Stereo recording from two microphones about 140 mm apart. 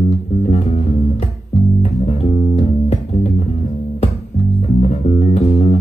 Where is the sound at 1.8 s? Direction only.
50° left (ahead or behind).